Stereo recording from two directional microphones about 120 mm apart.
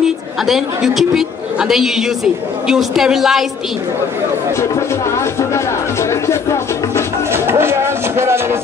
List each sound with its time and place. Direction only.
0.0 s a woman's voice: 5° right (ahead or behind)
4.6 s speech: 25° left (ahead or behind)
7.3 s music: 20° right (ahead or behind)